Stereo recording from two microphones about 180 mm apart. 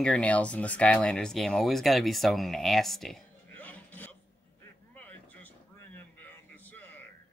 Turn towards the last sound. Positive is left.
turn(degrees=10)  # may be behind; listen again after turning